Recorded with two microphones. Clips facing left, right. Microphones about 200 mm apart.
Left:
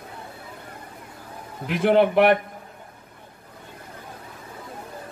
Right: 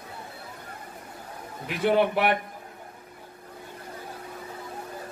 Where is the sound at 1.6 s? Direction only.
50° left (ahead or behind).